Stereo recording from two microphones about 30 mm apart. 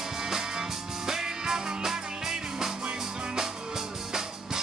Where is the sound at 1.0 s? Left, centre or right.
Centre.